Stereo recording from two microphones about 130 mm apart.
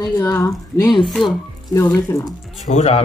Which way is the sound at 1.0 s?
Centre (ahead or behind).